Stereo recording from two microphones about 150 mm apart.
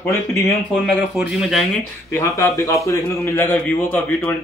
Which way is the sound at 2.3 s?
20° left (ahead or behind).